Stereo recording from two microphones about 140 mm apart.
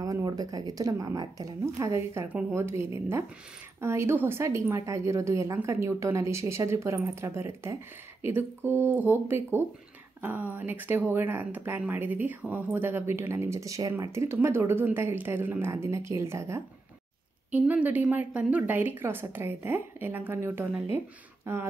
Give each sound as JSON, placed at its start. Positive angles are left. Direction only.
{"t": 0.0, "sound": "a woman's voice", "side_deg": -25}